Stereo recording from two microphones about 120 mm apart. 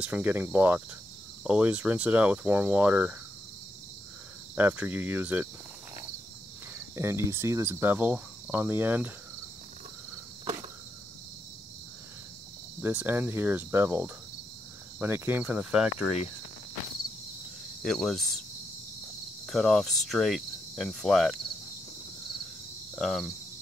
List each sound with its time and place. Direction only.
0.0 s cricket: 15° right (ahead or behind)
4.6 s cricket: 15° right (ahead or behind)
7.0 s cricket: 20° right (ahead or behind)
12.8 s cricket: 15° right (ahead or behind)
17.8 s speech: centre (ahead or behind)
19.4 s cricket: centre (ahead or behind)
22.9 s speech: centre (ahead or behind)